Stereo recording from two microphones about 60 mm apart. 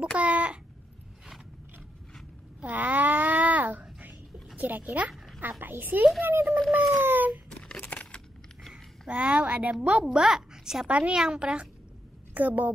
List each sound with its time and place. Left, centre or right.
0.0 s a child's voice: right
2.6 s babbling: right
4.6 s a woman's voice: right
5.1 s a sound: centre
5.6 s a woman's voice: right
7.0 s a sound: right
7.4 s crumpling: centre
7.8 s a sound: left
9.1 s a woman's voice: centre
12.4 s a woman's voice: right